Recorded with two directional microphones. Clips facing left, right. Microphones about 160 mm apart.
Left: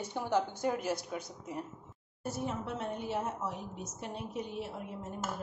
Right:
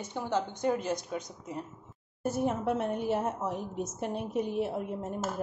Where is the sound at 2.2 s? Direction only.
55° right (ahead or behind).